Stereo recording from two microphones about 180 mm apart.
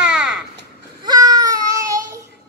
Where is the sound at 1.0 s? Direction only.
20° right (ahead or behind).